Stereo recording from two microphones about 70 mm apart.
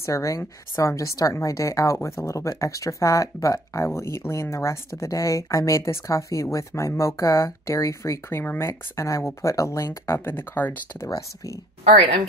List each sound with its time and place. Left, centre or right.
0.0 s speech: left
2.0 s speech: left
11.1 s speech: left